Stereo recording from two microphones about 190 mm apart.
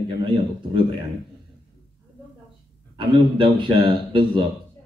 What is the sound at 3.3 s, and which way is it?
A man's voice, 25° right (ahead or behind).